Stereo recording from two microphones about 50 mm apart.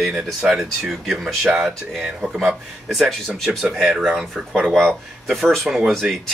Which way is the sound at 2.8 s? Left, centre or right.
Centre.